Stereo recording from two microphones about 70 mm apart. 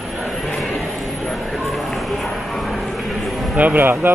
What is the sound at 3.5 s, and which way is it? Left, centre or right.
Speech, right.